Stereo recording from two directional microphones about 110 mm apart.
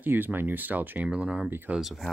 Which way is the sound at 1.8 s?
5° right (ahead or behind).